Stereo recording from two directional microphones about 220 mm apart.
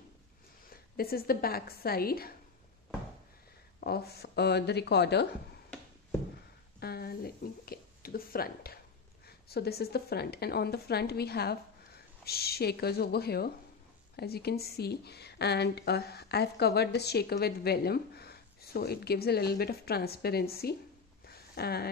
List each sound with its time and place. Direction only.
0.7 s speech: 45° left (ahead or behind)
3.8 s speech: 45° left (ahead or behind)
6.8 s a woman's voice: 45° left (ahead or behind)
21.3 s a sound: 45° left (ahead or behind)